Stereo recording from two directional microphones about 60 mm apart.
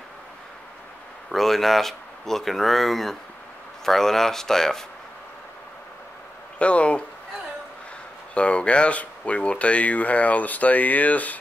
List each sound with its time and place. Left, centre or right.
1.3 s speech: centre
6.6 s speech: centre
8.4 s speech: centre